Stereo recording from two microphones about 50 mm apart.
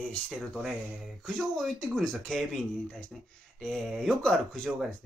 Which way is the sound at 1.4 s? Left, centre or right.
Centre.